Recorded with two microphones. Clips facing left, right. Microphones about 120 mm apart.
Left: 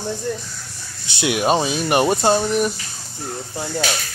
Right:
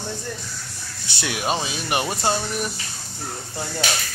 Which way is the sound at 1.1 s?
20° left (ahead or behind).